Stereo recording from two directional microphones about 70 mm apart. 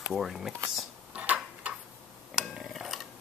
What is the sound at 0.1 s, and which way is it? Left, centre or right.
Speech, centre.